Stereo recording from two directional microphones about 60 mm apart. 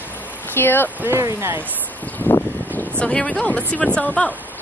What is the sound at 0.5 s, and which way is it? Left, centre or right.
Speech, left.